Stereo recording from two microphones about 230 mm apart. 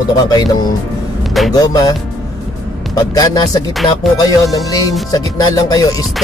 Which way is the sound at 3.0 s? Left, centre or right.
Centre.